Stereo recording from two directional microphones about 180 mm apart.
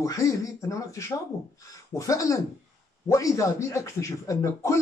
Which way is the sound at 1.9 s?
20° left (ahead or behind).